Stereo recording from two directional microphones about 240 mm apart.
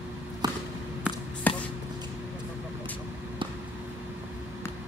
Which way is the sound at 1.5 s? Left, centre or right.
Centre.